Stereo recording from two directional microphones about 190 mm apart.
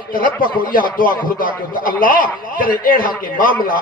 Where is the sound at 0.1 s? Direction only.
45° left (ahead or behind).